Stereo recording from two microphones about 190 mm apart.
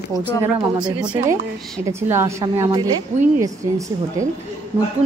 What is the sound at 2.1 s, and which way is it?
A woman's voice, 15° right (ahead or behind).